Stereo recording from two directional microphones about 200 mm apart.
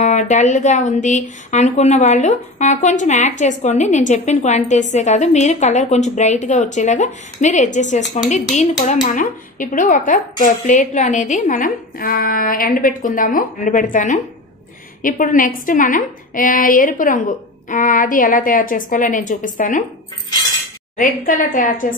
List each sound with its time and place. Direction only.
0.0 s speech: 35° left (ahead or behind)
21.0 s speech: 40° left (ahead or behind)